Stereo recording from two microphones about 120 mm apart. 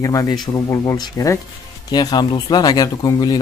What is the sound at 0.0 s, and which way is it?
Speech, 30° left (ahead or behind).